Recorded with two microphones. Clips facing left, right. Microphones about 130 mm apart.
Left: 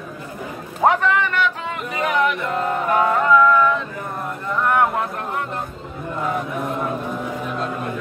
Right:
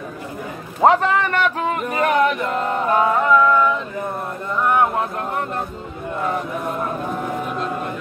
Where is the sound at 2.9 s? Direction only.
20° right (ahead or behind).